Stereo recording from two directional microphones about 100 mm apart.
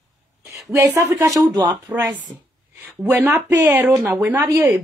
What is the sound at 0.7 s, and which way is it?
Speech, 25° right (ahead or behind).